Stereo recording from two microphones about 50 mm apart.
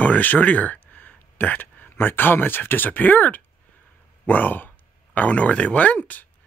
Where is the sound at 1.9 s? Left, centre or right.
Left.